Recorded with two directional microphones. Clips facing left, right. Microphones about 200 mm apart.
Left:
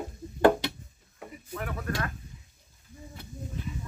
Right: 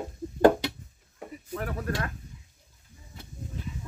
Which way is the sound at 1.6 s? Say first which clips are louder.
Right 1 dB; 35° right (ahead or behind).